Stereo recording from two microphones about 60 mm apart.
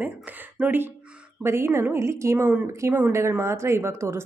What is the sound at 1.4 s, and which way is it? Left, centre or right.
Speech, right.